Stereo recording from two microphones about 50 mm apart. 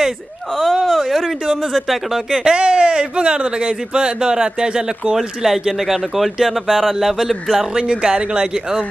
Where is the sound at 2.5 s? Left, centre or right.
Centre.